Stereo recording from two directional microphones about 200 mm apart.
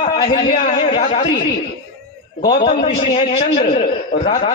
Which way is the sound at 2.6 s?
30° left (ahead or behind).